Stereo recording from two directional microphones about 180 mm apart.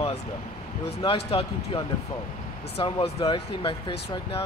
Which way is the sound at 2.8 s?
30° left (ahead or behind).